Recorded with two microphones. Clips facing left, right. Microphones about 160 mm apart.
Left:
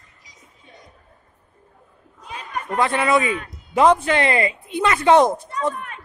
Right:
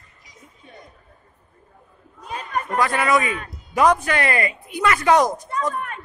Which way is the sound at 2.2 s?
45° right (ahead or behind).